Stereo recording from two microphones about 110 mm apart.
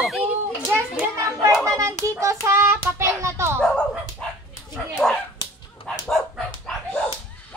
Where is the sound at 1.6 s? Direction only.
30° right (ahead or behind).